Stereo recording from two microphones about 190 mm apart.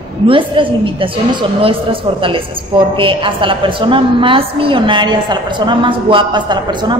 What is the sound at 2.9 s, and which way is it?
A woman's voice, 25° right (ahead or behind).